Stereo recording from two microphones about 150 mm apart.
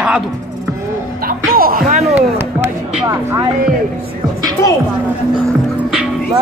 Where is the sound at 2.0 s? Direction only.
10° right (ahead or behind).